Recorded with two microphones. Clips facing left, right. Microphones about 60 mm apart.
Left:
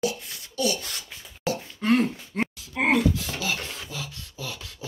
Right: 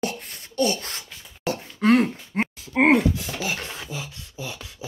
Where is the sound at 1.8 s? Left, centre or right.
Right.